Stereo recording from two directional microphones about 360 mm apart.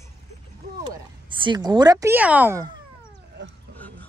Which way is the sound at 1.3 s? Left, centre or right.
Centre.